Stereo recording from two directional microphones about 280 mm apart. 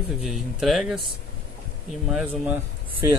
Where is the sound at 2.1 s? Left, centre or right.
Centre.